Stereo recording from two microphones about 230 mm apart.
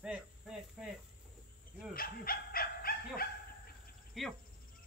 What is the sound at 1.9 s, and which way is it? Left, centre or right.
Dog, left.